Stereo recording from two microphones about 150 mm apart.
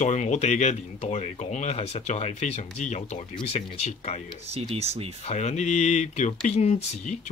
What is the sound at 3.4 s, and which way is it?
Speech, 40° left (ahead or behind).